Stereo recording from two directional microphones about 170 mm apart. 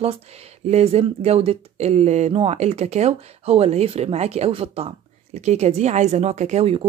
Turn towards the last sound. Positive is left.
turn(degrees=-35)  # may be behind; listen again after turning